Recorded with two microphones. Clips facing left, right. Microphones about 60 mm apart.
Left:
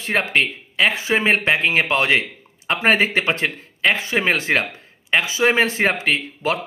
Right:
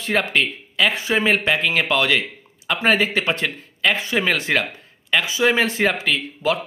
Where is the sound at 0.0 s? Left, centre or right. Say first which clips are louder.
Left 1 dB; left.